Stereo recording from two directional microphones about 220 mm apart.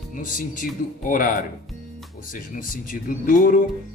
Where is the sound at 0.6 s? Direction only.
40° left (ahead or behind).